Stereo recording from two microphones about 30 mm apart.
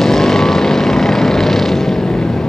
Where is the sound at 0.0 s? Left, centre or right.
Centre.